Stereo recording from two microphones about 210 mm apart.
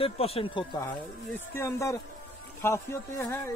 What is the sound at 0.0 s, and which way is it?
Speech, 25° left (ahead or behind).